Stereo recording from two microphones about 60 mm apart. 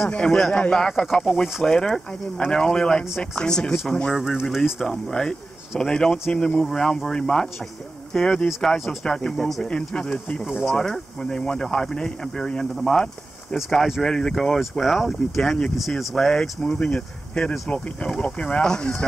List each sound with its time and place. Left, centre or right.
0.1 s speech: centre
4.4 s speech: centre